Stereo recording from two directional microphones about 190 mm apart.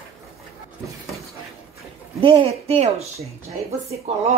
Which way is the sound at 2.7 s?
35° right (ahead or behind).